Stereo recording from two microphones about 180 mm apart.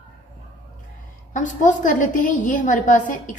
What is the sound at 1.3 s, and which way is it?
A woman's voice, 45° left (ahead or behind).